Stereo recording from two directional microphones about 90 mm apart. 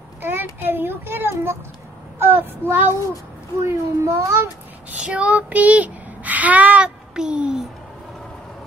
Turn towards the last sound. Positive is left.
turn(degrees=-10)  # may be behind; listen again after turning